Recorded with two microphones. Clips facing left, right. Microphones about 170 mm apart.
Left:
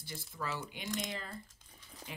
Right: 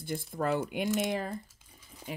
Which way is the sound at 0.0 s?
50° right (ahead or behind).